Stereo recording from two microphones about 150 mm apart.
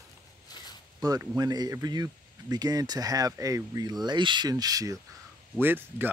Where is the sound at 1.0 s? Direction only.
25° right (ahead or behind).